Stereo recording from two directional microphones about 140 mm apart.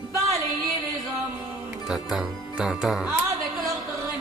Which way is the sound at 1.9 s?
Centre (ahead or behind).